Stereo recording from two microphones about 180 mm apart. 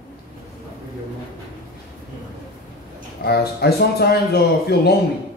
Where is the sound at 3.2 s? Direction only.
60° left (ahead or behind).